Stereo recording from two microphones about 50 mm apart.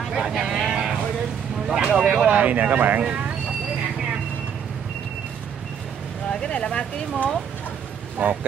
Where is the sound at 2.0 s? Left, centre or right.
Centre.